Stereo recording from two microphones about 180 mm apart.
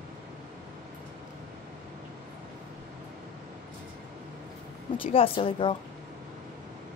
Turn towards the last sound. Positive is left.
turn(degrees=30)  # may be behind; listen again after turning